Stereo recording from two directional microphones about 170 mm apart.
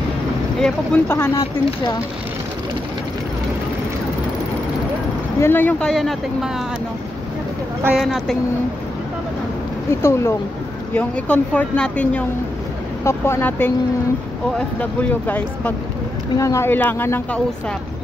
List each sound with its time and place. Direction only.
0.6 s speech: 5° left (ahead or behind)
5.4 s speech: 10° left (ahead or behind)
7.8 s speech: 5° right (ahead or behind)
9.8 s speech: 15° left (ahead or behind)
14.8 s speech: 10° left (ahead or behind)